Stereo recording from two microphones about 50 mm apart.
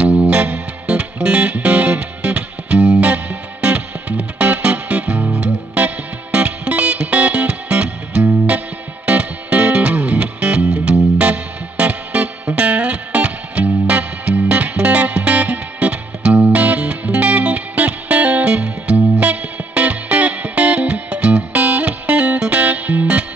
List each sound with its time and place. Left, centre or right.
0.0 s music: right